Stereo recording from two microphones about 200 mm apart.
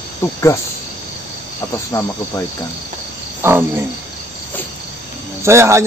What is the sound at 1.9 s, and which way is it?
Speech, 15° left (ahead or behind).